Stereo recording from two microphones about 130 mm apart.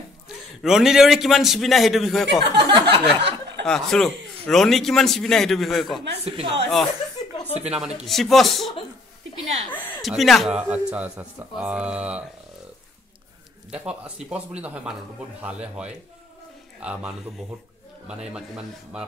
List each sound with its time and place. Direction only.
0.6 s a man's voice: 5° right (ahead or behind)
2.5 s a sound: 35° right (ahead or behind)
3.6 s a man's voice: 5° left (ahead or behind)
6.2 s speech: 50° right (ahead or behind)
7.6 s a man's voice: 5° right (ahead or behind)
10.0 s a man's voice: centre (ahead or behind)
10.6 s a man's voice: 10° right (ahead or behind)
13.7 s a man's voice: 10° right (ahead or behind)
18.0 s a man's voice: 5° right (ahead or behind)